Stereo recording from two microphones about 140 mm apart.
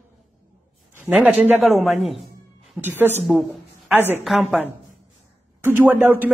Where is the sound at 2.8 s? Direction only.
15° right (ahead or behind).